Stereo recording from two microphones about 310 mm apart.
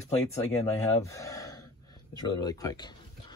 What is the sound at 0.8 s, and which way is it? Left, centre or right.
Speech, centre.